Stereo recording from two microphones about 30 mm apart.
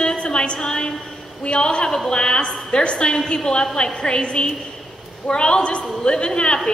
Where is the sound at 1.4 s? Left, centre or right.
Left.